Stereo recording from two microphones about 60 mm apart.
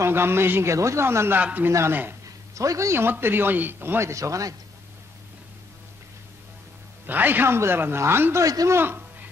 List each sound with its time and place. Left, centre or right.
0.0 s a man's voice: right
0.7 s speech: right
1.0 s speech: right
1.4 s speech: right
2.2 s a sound: right
2.9 s speech: right
4.0 s speech: right
7.1 s a man's voice: right